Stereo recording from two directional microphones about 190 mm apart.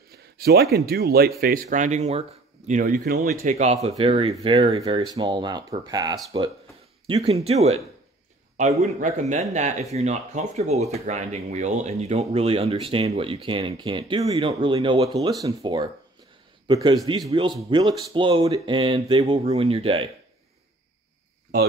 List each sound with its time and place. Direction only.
0.4 s speech: 55° right (ahead or behind); by 2.2 s 35° right (ahead or behind)
2.7 s speech: 45° right (ahead or behind)
3.4 s speech: 35° right (ahead or behind)
7.1 s speech: 35° right (ahead or behind)
8.8 s speech: 40° right (ahead or behind)